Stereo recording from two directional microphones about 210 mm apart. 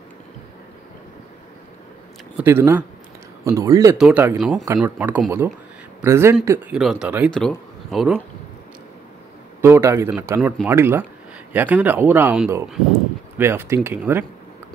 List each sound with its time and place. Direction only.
2.3 s speech: 10° right (ahead or behind)
9.6 s speech: 10° right (ahead or behind)